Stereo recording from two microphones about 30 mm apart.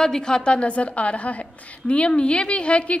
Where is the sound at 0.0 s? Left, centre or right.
Left.